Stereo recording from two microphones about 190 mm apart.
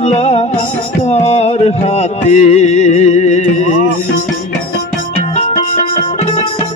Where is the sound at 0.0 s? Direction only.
35° left (ahead or behind).